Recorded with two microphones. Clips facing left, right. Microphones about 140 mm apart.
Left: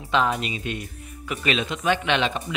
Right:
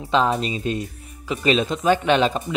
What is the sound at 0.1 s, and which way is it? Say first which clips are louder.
Speech: right 3 dB; 35° right (ahead or behind).